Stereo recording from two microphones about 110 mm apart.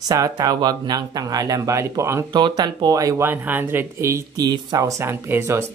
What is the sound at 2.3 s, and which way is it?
Speech, 40° right (ahead or behind).